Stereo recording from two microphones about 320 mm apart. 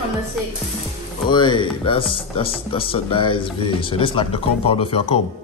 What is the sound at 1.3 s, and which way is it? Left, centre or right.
Speech, centre.